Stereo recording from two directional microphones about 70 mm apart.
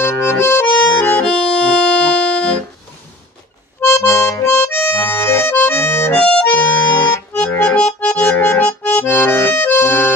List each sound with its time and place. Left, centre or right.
0.0 s accordion: left
1.2 s music: centre
3.8 s accordion: left
6.1 s accordion: centre
9.8 s music: left